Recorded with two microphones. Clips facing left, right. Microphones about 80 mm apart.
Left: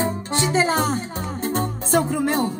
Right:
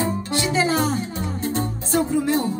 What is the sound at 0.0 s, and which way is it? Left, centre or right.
Music, left.